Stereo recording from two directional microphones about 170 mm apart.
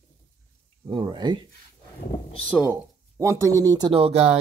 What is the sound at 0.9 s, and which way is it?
Speech, 30° right (ahead or behind).